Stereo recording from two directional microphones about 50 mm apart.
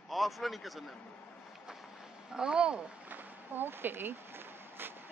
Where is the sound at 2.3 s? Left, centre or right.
Centre.